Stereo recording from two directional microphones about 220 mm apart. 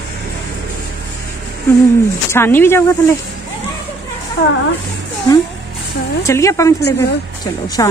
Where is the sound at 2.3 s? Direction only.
10° left (ahead or behind).